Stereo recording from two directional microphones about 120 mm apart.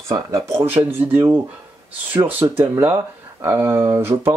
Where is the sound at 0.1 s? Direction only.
25° right (ahead or behind).